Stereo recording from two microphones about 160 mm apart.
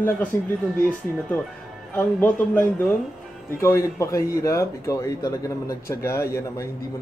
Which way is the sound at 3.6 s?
20° left (ahead or behind).